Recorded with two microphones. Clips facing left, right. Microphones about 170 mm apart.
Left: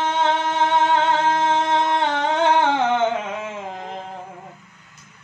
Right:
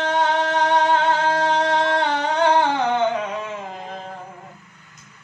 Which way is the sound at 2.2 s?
20° left (ahead or behind).